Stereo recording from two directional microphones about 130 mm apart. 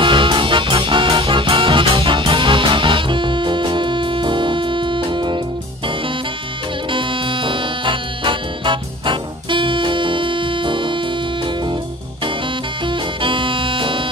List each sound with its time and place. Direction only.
0.0 s music: 40° right (ahead or behind)
6.9 s music: 40° right (ahead or behind)
12.8 s music: 40° right (ahead or behind)